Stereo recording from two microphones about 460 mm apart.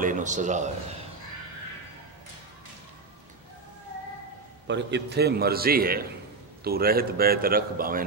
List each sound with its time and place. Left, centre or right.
0.0 s a man's voice: centre
4.6 s a man's voice: right